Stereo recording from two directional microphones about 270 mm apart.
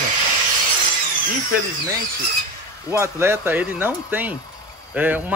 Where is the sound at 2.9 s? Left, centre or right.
Centre.